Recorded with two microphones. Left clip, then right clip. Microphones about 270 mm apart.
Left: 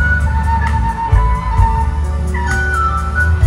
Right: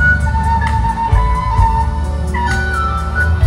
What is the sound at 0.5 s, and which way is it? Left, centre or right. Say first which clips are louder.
Music: right 2 dB; right.